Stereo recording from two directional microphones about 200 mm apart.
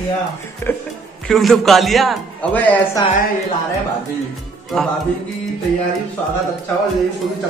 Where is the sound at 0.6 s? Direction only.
10° left (ahead or behind).